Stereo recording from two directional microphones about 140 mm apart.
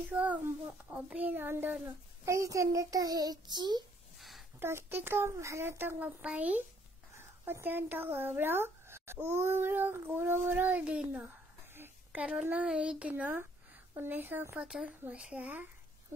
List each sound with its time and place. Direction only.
0.1 s a child's voice: 10° right (ahead or behind); by 3.8 s 30° right (ahead or behind)
4.2 s a sound: centre (ahead or behind)
4.6 s a child's voice: 15° right (ahead or behind)